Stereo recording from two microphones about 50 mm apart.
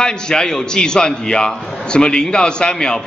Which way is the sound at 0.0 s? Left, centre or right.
Centre.